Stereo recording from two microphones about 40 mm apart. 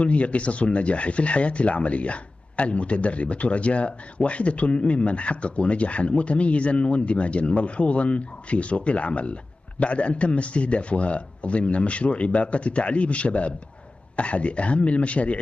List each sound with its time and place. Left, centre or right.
0.0 s speech: left